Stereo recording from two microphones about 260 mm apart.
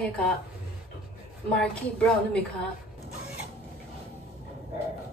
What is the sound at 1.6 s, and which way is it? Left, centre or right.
Speech, centre.